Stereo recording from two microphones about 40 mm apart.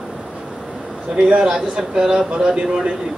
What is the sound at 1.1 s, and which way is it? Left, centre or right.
Speech, centre.